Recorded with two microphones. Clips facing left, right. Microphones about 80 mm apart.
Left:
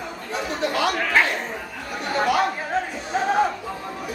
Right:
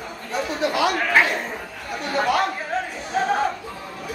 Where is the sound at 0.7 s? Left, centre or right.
Centre.